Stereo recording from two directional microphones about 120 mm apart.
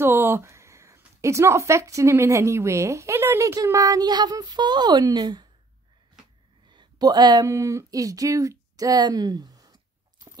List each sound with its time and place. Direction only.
0.0 s speech: 20° right (ahead or behind); by 5.5 s 35° right (ahead or behind)
6.7 s speech: 35° right (ahead or behind)